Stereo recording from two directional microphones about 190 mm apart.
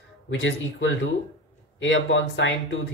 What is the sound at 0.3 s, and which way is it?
Speech, 80° left.